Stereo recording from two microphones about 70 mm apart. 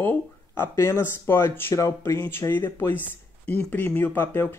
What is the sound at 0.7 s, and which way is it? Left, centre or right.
Speech, left.